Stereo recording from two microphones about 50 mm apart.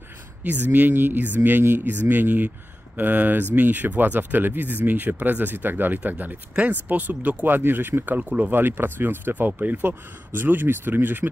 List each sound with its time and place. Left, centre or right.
0.4 s speech: right
9.8 s speech: right